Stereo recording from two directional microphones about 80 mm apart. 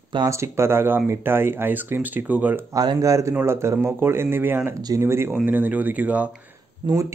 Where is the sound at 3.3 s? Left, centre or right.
Right.